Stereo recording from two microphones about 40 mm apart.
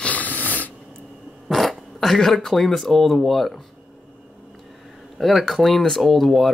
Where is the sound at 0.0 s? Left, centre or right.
Left.